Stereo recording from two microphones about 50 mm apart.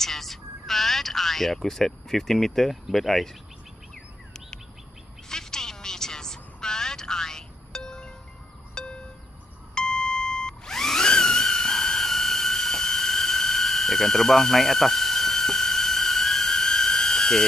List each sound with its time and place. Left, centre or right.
0.0 s speech: centre
5.3 s a sound: centre
8.8 s music: centre
9.8 s beep: centre